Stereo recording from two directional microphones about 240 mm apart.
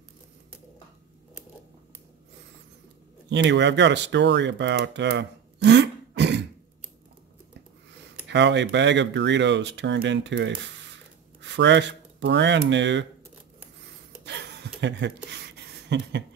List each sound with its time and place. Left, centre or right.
3.3 s speech: right
8.3 s speech: right
14.2 s a sound: right